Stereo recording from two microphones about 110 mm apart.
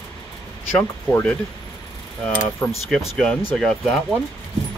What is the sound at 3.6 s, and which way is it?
Speech, 5° left (ahead or behind).